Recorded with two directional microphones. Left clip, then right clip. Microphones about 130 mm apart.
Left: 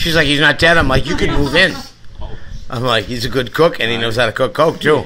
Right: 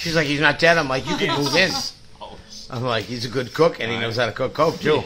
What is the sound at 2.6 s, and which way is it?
Speech, 30° left (ahead or behind).